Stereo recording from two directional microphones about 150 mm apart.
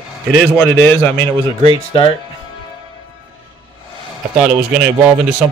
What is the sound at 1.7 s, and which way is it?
Speech, 35° left (ahead or behind).